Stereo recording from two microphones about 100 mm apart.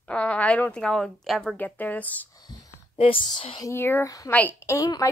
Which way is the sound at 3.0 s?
65° left (ahead or behind).